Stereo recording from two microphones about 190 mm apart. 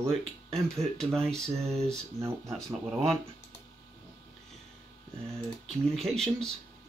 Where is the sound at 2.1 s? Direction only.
15° right (ahead or behind).